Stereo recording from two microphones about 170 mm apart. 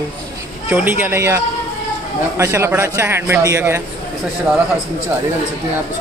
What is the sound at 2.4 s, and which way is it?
Speech, 15° right (ahead or behind).